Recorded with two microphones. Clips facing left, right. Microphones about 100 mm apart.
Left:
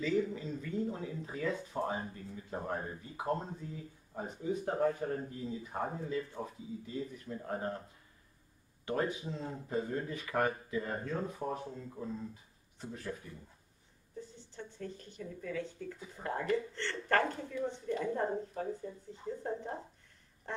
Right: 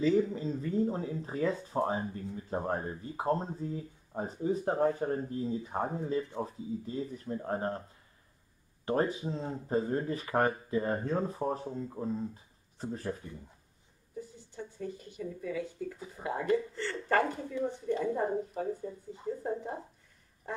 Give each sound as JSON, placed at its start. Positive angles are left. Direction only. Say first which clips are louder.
{"t": 0.3, "sound": "speech", "louder": "right 5 dB", "side_deg": -35}
{"t": 1.8, "sound": "speech", "louder": "right 6 dB", "side_deg": -20}
{"t": 2.3, "sound": "speech", "louder": "right 4 dB", "side_deg": -35}
{"t": 8.8, "sound": "speech", "louder": "right 4 dB", "side_deg": -35}
{"t": 14.1, "sound": "speech", "louder": "right 4 dB", "side_deg": -10}
{"t": 20.4, "sound": "a sound", "louder": "right 2 dB", "side_deg": -10}